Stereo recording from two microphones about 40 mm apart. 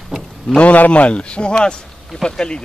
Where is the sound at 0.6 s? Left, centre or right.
Left.